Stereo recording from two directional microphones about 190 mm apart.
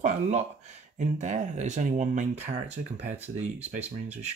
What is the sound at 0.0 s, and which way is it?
Speech, 40° right (ahead or behind).